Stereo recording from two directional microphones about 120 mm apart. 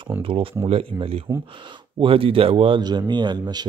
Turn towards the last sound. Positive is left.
turn(degrees=-35)  # may be behind; listen again after turning